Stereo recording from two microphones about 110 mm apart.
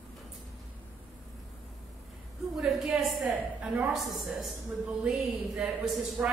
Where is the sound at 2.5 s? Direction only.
Centre (ahead or behind).